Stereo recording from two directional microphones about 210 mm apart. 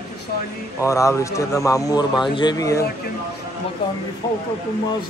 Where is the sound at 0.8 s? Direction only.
15° left (ahead or behind).